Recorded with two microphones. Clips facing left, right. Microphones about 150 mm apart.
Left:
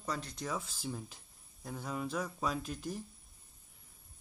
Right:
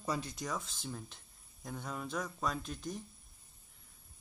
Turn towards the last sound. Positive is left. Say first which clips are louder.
# left 2 dB
turn(degrees=5)  # may be behind; listen again after turning